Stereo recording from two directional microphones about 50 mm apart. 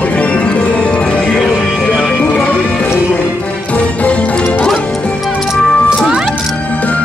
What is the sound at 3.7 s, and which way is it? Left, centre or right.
Music, left.